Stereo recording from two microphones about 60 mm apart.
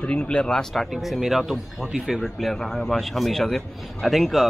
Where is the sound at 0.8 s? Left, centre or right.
Centre.